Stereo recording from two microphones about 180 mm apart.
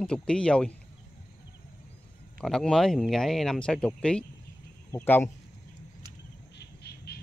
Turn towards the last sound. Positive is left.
turn(degrees=65)  # may be behind; listen again after turning